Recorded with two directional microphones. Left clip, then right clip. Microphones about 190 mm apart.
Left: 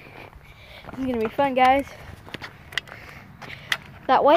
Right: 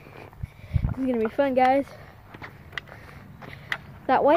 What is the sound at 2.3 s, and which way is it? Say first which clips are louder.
Vehicle: left 6 dB; 50° left (ahead or behind).